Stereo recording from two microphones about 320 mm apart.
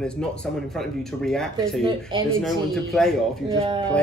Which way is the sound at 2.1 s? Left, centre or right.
Centre.